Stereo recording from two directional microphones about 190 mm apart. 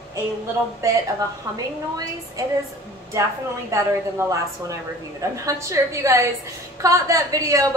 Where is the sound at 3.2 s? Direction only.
20° right (ahead or behind).